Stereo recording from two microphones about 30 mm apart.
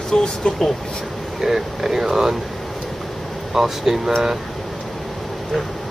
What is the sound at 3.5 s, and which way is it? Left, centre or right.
Speech, centre.